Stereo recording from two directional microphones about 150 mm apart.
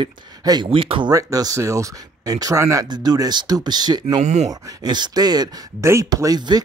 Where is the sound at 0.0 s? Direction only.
30° right (ahead or behind).